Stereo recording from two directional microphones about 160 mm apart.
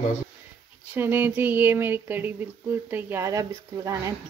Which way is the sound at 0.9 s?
15° right (ahead or behind).